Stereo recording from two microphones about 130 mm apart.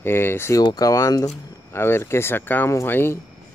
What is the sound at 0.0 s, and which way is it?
Speech, 20° left (ahead or behind).